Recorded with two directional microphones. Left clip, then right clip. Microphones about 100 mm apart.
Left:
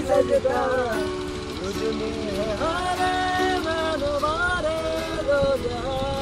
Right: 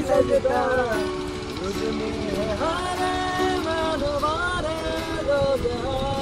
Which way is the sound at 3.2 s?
50° right (ahead or behind).